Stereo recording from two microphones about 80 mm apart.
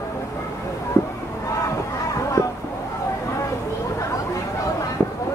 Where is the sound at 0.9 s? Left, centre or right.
Left.